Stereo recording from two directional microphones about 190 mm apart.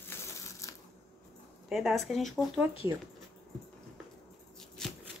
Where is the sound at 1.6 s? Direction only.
Centre (ahead or behind).